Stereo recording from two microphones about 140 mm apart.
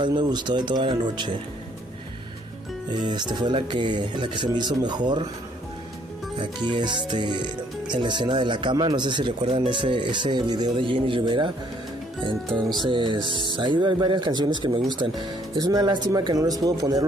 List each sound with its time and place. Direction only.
0.0 s speech: 35° right (ahead or behind)
2.9 s speech: 30° right (ahead or behind)
6.3 s speech: 35° right (ahead or behind)